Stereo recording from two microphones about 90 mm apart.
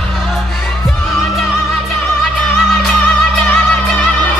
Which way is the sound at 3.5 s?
20° left (ahead or behind).